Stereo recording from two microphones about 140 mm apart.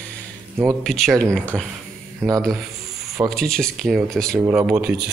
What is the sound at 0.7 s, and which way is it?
Speech, centre (ahead or behind).